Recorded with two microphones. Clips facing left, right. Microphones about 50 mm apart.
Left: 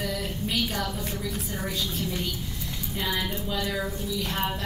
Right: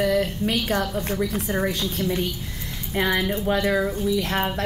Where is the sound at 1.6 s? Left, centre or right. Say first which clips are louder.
Right 6 dB; right.